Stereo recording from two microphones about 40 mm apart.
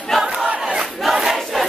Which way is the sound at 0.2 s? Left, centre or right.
Centre.